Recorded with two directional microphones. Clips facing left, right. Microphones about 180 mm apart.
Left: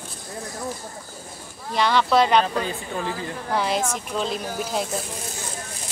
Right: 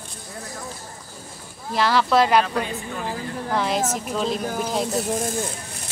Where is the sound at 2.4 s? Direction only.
30° left (ahead or behind).